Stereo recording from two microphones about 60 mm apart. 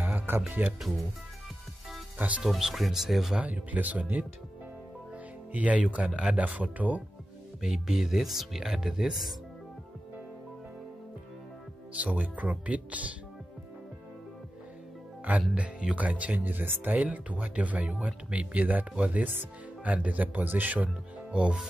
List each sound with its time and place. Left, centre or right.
0.0 s music: right
0.5 s speech: right
2.4 s speech: centre
3.3 s speech: right
5.5 s speech: right
7.6 s speech: centre
11.9 s speech: right
15.5 s speech: centre